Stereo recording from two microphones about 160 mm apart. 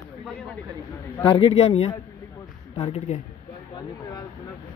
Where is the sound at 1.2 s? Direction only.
30° left (ahead or behind).